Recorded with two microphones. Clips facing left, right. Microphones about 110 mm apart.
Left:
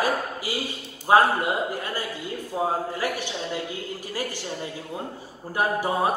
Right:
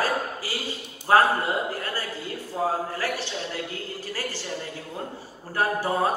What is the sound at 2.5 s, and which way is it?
Speech, 15° left (ahead or behind).